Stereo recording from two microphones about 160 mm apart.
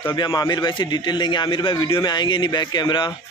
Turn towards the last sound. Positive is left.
turn(degrees=25)  # may be behind; listen again after turning